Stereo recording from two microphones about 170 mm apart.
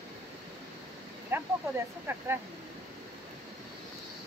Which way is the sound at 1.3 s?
10° right (ahead or behind).